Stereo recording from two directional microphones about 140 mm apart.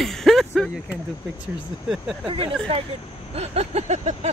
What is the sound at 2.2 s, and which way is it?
Speech, 40° right (ahead or behind).